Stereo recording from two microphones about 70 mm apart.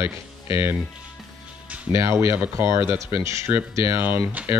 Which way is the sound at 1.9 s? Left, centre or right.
Right.